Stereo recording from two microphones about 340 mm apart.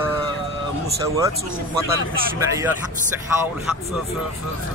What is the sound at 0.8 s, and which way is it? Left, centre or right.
Speech, centre.